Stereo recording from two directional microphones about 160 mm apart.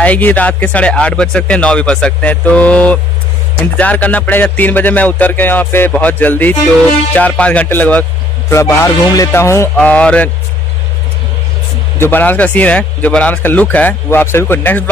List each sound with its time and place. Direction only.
0.0 s speech: 10° left (ahead or behind)
12.0 s speech: 10° left (ahead or behind)